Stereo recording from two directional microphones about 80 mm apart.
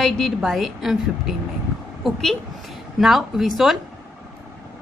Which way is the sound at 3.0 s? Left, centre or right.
Centre.